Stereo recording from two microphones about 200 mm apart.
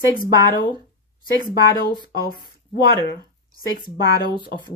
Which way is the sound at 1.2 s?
45° left (ahead or behind).